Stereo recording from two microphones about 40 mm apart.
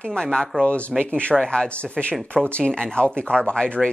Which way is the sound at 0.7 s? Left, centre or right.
Left.